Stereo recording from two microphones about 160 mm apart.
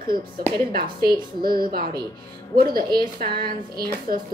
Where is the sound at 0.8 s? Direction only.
30° right (ahead or behind).